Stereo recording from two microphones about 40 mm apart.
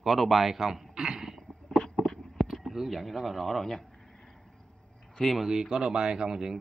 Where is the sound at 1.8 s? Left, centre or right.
Centre.